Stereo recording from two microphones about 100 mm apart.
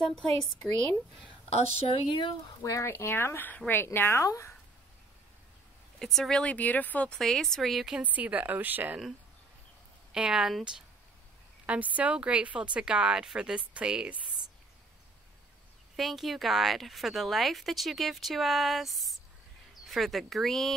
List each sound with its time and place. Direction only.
0.0 s speech: 5° left (ahead or behind)
1.5 s a woman's voice: 90° left
2.6 s speech: 30° left (ahead or behind)
5.9 s speech: 5° left (ahead or behind)
7.2 s speech: 5° left (ahead or behind); by 9.0 s 20° right (ahead or behind)
10.1 s speech: 10° right (ahead or behind)
16.0 s speech: centre (ahead or behind)